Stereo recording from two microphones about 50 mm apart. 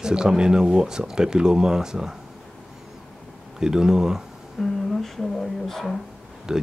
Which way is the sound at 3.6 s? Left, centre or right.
Centre.